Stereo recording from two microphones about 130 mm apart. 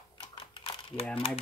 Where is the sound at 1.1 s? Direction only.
50° left (ahead or behind).